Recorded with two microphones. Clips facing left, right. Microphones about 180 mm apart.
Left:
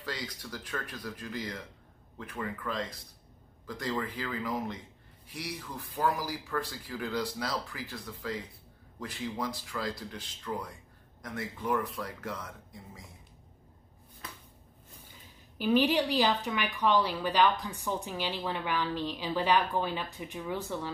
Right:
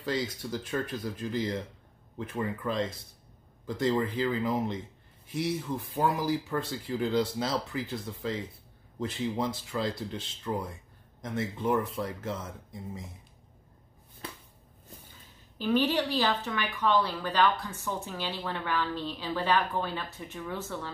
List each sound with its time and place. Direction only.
0.0 s speech: 25° right (ahead or behind)
15.5 s a woman's voice: 10° left (ahead or behind)